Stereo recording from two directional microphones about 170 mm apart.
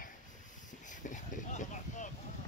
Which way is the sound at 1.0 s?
45° left (ahead or behind).